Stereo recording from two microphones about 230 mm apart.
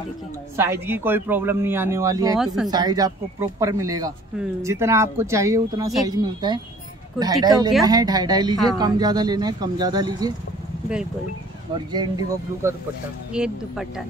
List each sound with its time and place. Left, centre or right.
0.6 s a man's voice: centre
2.3 s speech: centre
2.7 s a man's voice: centre
11.7 s speech: centre
13.3 s speech: centre